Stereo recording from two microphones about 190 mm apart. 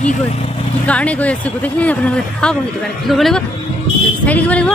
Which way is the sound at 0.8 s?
5° left (ahead or behind).